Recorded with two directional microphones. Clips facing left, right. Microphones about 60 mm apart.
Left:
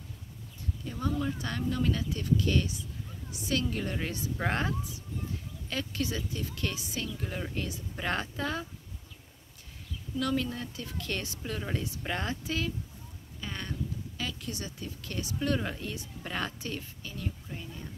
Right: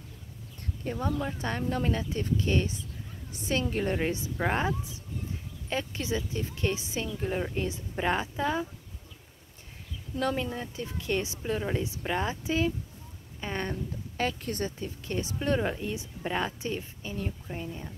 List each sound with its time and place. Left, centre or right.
0.9 s speech: right
10.3 s speech: right
13.4 s speech: right